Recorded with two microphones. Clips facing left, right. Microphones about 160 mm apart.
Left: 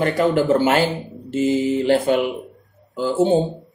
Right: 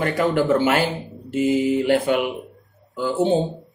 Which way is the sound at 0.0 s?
30° left (ahead or behind).